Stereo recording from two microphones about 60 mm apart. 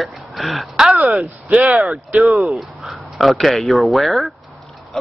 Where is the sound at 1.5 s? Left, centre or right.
Right.